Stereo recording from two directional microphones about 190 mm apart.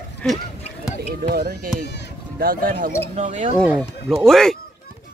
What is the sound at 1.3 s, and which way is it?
Speech, 50° right (ahead or behind).